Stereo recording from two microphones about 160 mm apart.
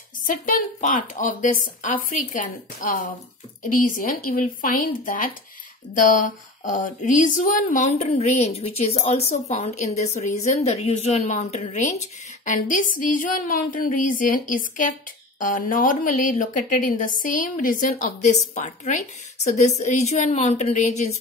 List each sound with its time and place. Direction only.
0.3 s a woman's voice: 55° left (ahead or behind)
12.4 s a woman's voice: 55° left (ahead or behind)